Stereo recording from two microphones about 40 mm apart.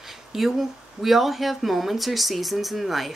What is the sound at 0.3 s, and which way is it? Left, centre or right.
Speech, centre.